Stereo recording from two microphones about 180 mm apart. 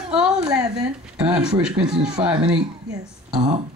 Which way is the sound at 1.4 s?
5° right (ahead or behind).